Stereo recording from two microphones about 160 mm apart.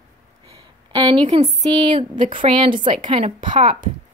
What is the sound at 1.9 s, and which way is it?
A woman's voice, 30° right (ahead or behind).